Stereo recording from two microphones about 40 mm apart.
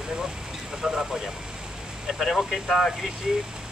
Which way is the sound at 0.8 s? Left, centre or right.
Centre.